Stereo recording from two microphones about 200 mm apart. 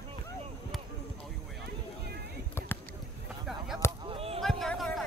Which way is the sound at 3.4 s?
Centre (ahead or behind).